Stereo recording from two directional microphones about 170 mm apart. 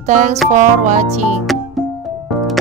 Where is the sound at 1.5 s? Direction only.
Centre (ahead or behind).